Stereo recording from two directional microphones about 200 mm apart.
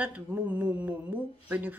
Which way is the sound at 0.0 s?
10° right (ahead or behind).